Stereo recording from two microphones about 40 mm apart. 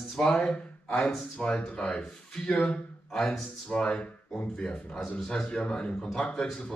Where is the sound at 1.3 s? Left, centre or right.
Left.